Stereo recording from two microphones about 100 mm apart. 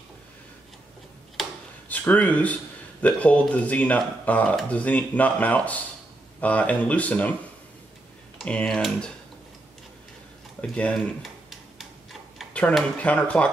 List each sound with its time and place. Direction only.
1.4 s a sound: centre (ahead or behind)
1.9 s speech: 15° left (ahead or behind)
8.5 s speech: 5° left (ahead or behind)
10.6 s speech: 10° left (ahead or behind)
11.5 s tick-tock: centre (ahead or behind)
13.0 s speech: 15° left (ahead or behind)